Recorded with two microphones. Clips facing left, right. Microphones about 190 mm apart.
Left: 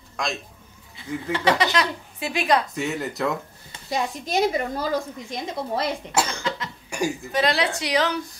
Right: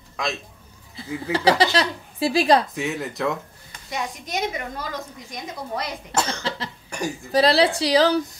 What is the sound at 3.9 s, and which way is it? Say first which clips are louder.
A woman's voice: left 4 dB; 30° left (ahead or behind).